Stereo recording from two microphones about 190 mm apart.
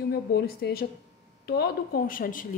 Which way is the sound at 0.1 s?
55° left (ahead or behind).